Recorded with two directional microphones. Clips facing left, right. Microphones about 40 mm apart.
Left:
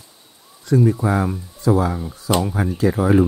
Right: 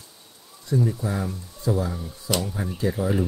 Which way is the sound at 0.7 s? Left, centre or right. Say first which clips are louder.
Left 8 dB; left.